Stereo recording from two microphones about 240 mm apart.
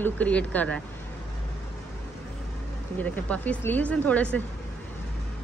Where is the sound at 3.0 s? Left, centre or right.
Centre.